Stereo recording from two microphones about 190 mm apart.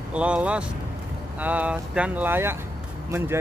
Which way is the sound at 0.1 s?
5° right (ahead or behind).